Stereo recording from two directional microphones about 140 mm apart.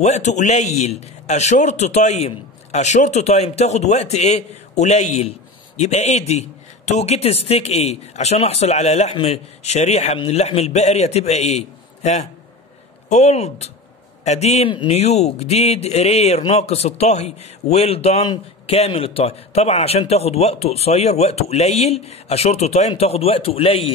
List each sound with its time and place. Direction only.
0.0 s a man's voice: 55° left (ahead or behind)